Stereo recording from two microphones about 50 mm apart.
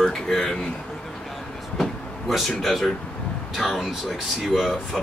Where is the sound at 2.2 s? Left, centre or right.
Centre.